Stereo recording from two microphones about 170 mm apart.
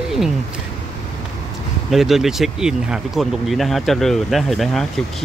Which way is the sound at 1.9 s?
Centre (ahead or behind).